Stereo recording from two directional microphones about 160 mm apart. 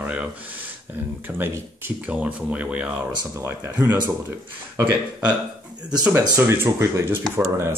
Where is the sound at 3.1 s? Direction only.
25° right (ahead or behind).